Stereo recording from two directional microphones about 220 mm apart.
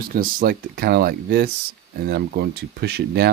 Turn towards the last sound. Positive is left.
turn(degrees=-50)  # may be behind; listen again after turning